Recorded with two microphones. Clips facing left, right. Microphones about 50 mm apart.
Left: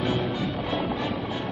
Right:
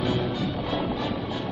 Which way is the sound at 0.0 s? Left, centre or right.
Centre.